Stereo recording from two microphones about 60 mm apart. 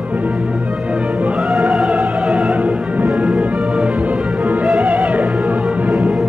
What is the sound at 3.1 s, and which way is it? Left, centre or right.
Music, centre.